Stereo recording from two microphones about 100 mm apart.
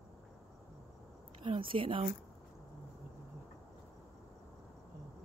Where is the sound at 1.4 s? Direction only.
55° right (ahead or behind).